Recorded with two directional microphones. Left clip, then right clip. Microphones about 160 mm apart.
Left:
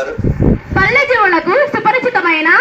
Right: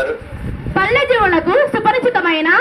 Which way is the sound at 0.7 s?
25° right (ahead or behind).